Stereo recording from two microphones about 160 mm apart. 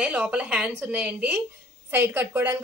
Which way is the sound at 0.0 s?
10° right (ahead or behind).